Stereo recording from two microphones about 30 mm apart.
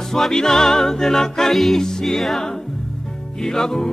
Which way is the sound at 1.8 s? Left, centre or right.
Centre.